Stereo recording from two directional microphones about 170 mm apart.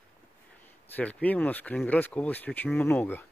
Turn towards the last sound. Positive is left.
turn(degrees=10)  # may be behind; listen again after turning